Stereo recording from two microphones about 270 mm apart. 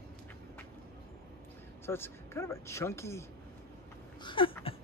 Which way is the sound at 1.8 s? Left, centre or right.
Centre.